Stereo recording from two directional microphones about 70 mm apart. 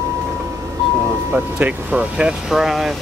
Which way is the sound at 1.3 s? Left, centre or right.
Right.